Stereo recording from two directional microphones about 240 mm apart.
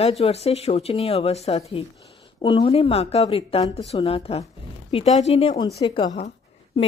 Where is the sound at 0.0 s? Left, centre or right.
Left.